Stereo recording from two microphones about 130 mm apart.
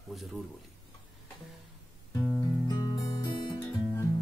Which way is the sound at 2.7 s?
25° left (ahead or behind).